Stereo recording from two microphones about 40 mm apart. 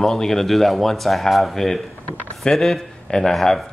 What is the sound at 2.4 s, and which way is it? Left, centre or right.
Speech, centre.